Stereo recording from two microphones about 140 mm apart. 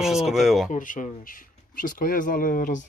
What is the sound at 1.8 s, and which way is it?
Speech, 85° left.